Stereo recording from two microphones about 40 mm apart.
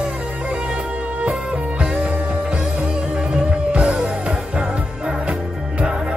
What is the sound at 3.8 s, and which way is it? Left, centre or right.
Music, right.